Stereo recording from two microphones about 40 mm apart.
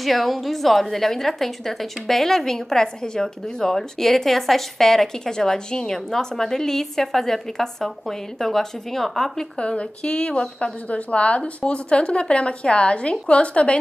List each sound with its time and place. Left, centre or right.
0.0 s a woman's voice: centre
9.6 s speech: left